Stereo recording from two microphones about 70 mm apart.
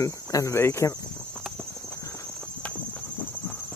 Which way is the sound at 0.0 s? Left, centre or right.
Left.